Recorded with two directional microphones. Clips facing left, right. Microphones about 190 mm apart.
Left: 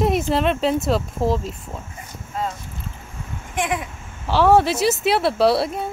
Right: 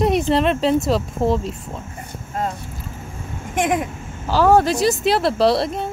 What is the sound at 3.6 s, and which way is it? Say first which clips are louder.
Speech: right 4 dB; 45° right (ahead or behind).